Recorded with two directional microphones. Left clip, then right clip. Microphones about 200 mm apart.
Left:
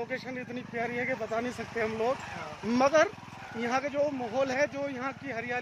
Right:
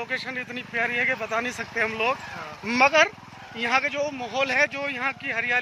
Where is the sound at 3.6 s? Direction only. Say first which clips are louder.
Right 5 dB; 20° left (ahead or behind).